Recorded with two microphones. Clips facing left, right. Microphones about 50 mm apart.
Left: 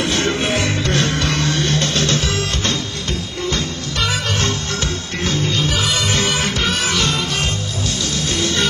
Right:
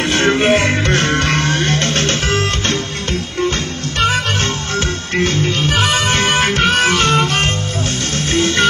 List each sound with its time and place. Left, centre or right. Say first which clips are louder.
0.0 s music: right 5 dB; right